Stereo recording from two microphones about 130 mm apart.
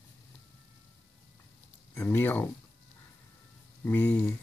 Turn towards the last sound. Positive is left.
turn(degrees=15)  # may be behind; listen again after turning